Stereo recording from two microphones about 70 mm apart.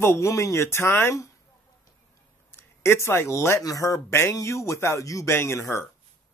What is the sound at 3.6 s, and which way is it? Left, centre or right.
Speech, left.